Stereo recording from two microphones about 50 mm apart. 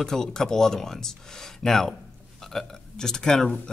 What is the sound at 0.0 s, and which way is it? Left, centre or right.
Speech, centre.